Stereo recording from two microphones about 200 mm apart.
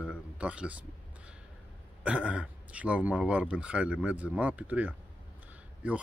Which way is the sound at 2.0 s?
5° right (ahead or behind).